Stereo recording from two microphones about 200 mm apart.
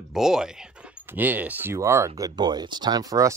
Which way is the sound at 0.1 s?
5° right (ahead or behind).